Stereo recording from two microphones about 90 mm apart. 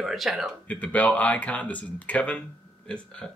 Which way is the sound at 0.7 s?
15° left (ahead or behind).